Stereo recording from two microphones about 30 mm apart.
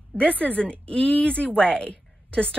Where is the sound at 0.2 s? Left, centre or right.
Left.